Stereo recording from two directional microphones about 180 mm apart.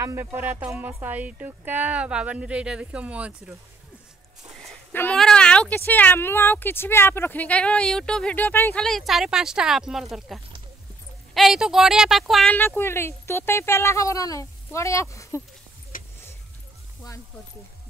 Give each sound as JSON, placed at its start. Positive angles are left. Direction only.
{"t": 0.0, "sound": "speech", "side_deg": -15}
{"t": 4.6, "sound": "a woman's voice", "side_deg": 5}
{"t": 12.5, "sound": "speech", "side_deg": 15}